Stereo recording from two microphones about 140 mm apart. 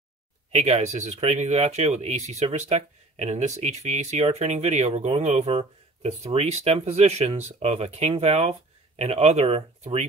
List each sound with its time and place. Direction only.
0.6 s speech: 50° right (ahead or behind)